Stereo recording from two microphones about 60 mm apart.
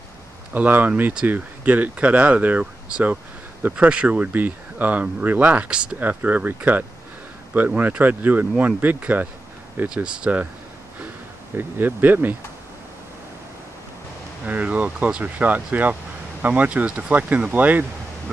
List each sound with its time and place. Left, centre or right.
0.5 s speech: right
3.8 s speech: right
5.9 s speech: right
9.9 s speech: centre
11.5 s speech: right
14.4 s speech: right